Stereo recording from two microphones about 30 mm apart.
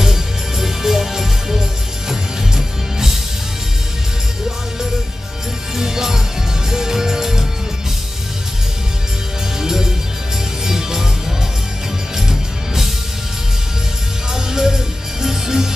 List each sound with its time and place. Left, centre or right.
0.0 s music: centre
5.8 s music: centre
9.6 s music: centre
12.3 s music: centre
14.3 s music: centre